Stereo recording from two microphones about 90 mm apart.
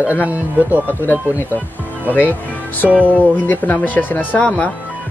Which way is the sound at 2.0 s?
20° left (ahead or behind).